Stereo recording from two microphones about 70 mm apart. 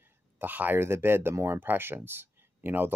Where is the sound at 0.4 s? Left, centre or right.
Right.